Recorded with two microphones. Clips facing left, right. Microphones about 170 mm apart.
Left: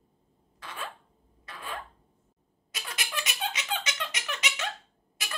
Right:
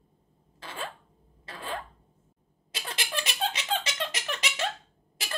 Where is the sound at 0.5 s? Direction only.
25° right (ahead or behind).